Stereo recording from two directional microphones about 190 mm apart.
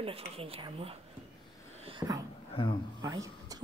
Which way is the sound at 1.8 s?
25° right (ahead or behind).